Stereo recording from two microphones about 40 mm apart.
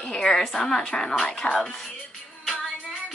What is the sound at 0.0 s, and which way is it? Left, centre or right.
Speech, centre.